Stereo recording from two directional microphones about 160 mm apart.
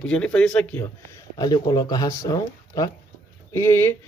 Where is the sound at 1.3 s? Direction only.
25° left (ahead or behind).